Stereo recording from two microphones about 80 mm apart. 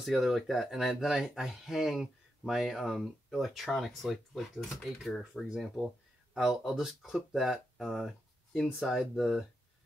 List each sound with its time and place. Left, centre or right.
0.0 s speech: centre